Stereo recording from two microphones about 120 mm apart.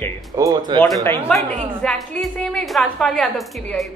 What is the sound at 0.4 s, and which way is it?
Speech, 35° right (ahead or behind).